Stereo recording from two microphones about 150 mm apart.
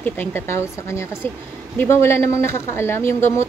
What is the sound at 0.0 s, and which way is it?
Speech, 15° left (ahead or behind).